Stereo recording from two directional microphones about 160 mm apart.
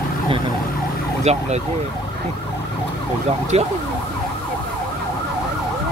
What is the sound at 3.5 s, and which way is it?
Speech, 40° right (ahead or behind).